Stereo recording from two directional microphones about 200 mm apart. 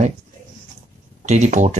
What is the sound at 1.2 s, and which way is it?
Speech, 35° right (ahead or behind).